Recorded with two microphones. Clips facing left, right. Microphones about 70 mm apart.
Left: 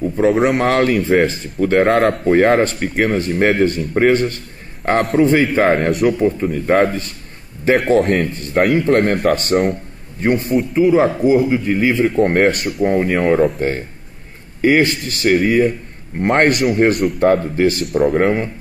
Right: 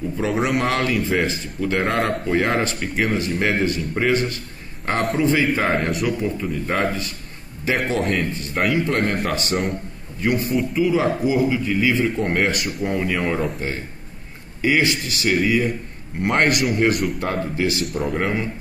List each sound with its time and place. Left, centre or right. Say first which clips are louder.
0.2 s speech: left 7 dB; left
17.8 s speech: left 9 dB; centre
18.1 s speech: left 7 dB; left